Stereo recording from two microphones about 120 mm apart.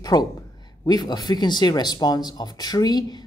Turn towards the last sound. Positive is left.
turn(degrees=35)  # may be behind; listen again after turning